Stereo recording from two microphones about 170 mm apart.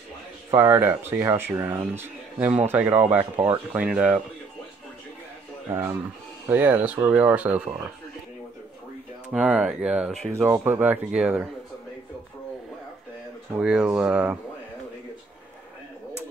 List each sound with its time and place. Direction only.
0.5 s speech: 15° right (ahead or behind)
5.7 s speech: 15° right (ahead or behind)
9.3 s speech: 5° right (ahead or behind)
10.3 s speech: 15° right (ahead or behind)
13.6 s speech: 5° right (ahead or behind)